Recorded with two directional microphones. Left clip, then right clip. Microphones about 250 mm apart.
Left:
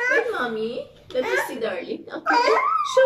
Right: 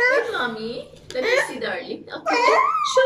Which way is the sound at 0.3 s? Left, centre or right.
Centre.